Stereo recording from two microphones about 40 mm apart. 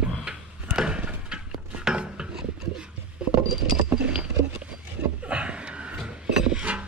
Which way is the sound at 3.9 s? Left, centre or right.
Right.